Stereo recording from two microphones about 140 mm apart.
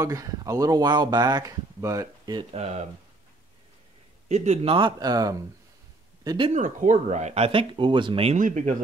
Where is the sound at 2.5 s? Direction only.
50° right (ahead or behind).